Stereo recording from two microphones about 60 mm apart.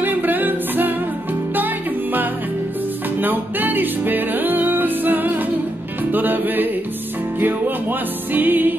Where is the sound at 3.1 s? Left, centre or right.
Right.